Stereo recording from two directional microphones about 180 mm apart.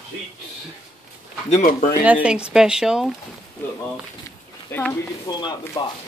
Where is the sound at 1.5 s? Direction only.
50° left (ahead or behind).